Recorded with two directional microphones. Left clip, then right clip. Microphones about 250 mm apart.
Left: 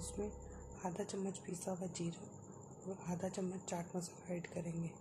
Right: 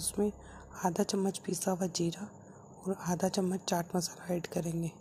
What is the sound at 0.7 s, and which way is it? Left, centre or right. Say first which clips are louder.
A woman's voice: right 11 dB; right.